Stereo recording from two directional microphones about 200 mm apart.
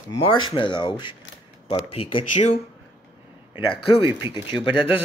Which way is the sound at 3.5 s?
25° left (ahead or behind).